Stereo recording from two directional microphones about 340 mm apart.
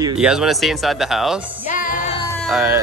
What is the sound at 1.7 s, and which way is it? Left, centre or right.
Music, left.